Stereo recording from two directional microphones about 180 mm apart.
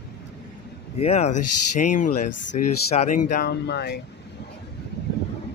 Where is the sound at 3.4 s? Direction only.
70° left (ahead or behind).